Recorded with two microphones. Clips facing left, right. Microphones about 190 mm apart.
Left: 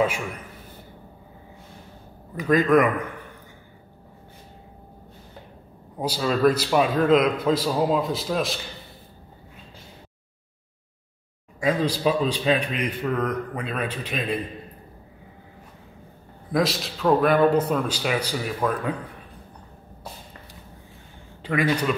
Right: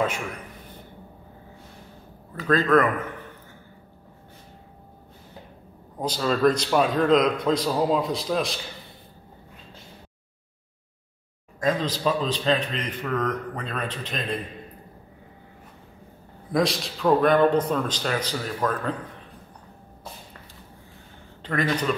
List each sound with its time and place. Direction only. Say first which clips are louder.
2.3 s a man's voice: left 2 dB; 15° left (ahead or behind)
5.9 s a man's voice: left 1 dB; 10° left (ahead or behind)
11.6 s a man's voice: left 2 dB; 10° left (ahead or behind)
16.5 s a man's voice: even; centre (ahead or behind)
21.4 s a man's voice: left 2 dB; 10° left (ahead or behind)